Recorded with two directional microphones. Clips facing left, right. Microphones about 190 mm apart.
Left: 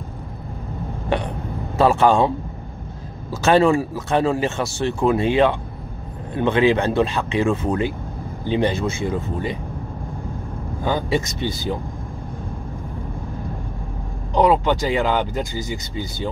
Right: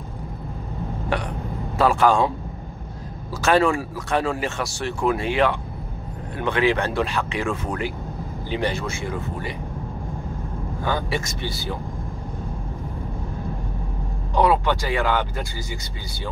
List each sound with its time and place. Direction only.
1.8 s speech: 25° left (ahead or behind)
3.4 s speech: 25° left (ahead or behind)
10.8 s speech: 20° left (ahead or behind)
14.3 s speech: 20° left (ahead or behind)